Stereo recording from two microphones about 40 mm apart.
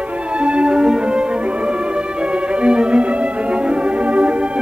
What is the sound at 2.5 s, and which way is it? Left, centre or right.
Music, right.